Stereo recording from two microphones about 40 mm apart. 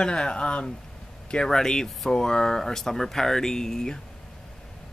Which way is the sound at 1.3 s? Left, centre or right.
Centre.